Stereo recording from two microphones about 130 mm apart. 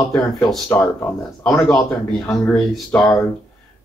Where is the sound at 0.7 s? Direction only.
20° left (ahead or behind).